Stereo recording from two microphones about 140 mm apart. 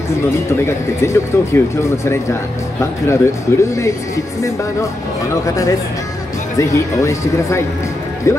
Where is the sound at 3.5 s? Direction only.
20° left (ahead or behind).